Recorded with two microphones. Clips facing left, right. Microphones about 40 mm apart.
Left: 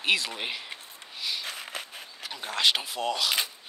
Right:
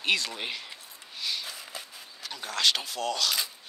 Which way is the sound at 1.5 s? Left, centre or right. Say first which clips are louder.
Left 4 dB; left.